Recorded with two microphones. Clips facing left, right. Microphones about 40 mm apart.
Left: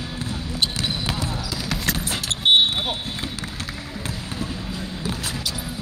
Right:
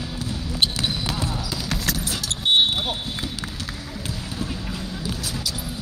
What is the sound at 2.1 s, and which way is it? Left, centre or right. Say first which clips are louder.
Vehicle: left 4 dB; left.